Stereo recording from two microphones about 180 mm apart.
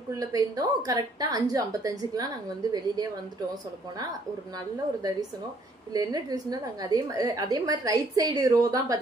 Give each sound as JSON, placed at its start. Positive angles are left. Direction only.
{"t": 0.1, "sound": "a woman's voice", "side_deg": -20}
{"t": 5.9, "sound": "a woman's voice", "side_deg": -20}